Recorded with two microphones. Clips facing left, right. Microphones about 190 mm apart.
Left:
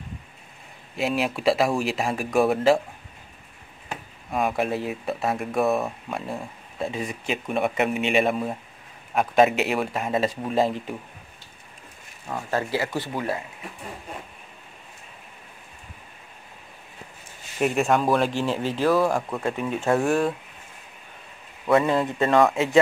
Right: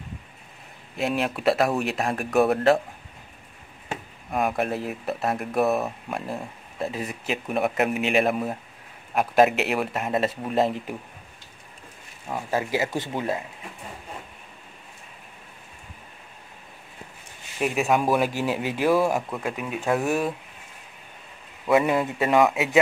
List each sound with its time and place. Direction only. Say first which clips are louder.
0.9 s speech: left 1 dB; centre (ahead or behind)
4.3 s speech: left 1 dB; centre (ahead or behind)
12.3 s speech: even; 10° right (ahead or behind)
17.6 s speech: left 1 dB; 5° right (ahead or behind)
21.6 s speech: even; 10° right (ahead or behind)